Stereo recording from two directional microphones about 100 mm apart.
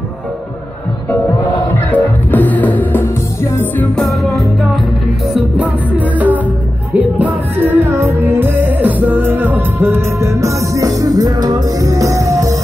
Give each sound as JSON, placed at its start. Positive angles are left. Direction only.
{"t": 1.9, "sound": "music", "side_deg": 15}
{"t": 3.9, "sound": "music", "side_deg": 0}
{"t": 5.6, "sound": "music", "side_deg": -15}